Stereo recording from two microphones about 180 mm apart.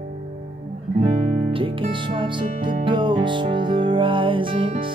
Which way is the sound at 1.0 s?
30° right (ahead or behind).